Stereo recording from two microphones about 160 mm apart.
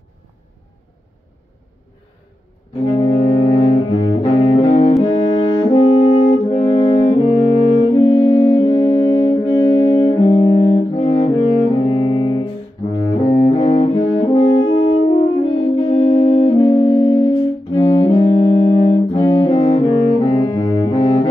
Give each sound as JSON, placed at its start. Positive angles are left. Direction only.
{"t": 2.8, "sound": "saxophone", "side_deg": 35}
{"t": 5.6, "sound": "brass instrument", "side_deg": 35}
{"t": 9.9, "sound": "saxophone", "side_deg": 30}
{"t": 13.2, "sound": "double bass", "side_deg": 35}
{"t": 14.5, "sound": "brass instrument", "side_deg": 25}
{"t": 14.9, "sound": "saxophone", "side_deg": 30}
{"t": 17.7, "sound": "music", "side_deg": 35}